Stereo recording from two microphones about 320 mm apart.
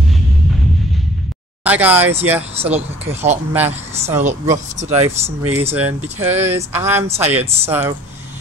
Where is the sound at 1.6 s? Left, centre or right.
Centre.